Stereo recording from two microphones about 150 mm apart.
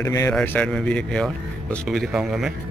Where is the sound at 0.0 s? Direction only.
20° left (ahead or behind).